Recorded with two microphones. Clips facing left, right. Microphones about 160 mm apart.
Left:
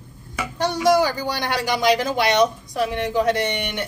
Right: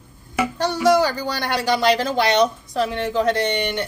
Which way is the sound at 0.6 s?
15° left (ahead or behind).